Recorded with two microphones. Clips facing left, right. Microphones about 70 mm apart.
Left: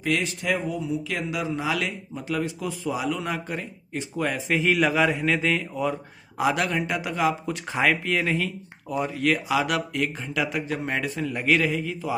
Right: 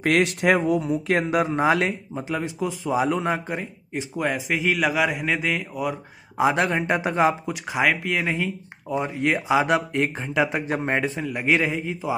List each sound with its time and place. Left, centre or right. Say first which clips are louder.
0.0 s speech: right 6 dB; right
2.2 s speech: right 1 dB; right; by 5.9 s centre
6.3 s speech: right 3 dB; right
7.4 s speech: right 1 dB; centre; by 11.2 s right
11.2 s a man's voice: right 1 dB; centre
11.5 s speech: right 1 dB; right